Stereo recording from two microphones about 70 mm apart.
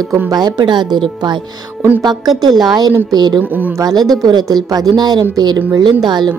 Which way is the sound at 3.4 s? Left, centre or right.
Right.